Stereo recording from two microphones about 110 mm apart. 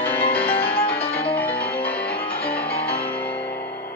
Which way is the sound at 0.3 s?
10° left (ahead or behind).